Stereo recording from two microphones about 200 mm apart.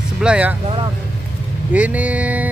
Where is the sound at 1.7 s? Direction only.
5° right (ahead or behind).